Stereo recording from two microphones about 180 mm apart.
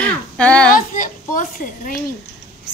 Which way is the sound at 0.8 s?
45° left (ahead or behind).